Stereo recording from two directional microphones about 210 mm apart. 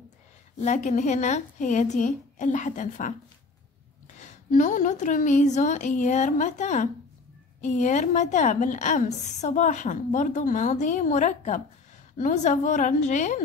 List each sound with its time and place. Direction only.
0.6 s a woman's voice: 35° left (ahead or behind)
4.2 s a woman's voice: 35° left (ahead or behind)